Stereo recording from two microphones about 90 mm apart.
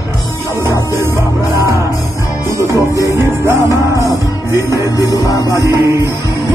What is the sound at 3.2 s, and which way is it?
Music, 25° right (ahead or behind).